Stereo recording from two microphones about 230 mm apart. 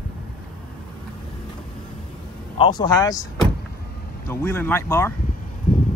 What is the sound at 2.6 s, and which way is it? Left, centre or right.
Speech, centre.